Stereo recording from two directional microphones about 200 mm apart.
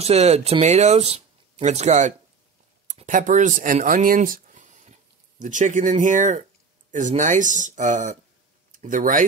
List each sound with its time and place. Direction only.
0.0 s speech: 30° right (ahead or behind)